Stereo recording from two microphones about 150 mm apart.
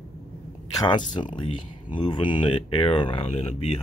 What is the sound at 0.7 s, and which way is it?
Speech, 30° left (ahead or behind).